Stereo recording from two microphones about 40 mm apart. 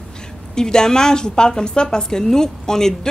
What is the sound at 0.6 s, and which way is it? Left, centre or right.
A woman's voice, centre.